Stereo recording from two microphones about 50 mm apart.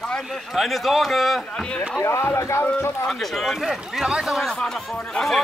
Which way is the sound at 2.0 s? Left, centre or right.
Left.